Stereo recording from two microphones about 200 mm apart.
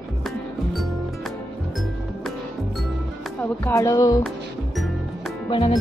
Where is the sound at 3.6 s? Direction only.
15° left (ahead or behind).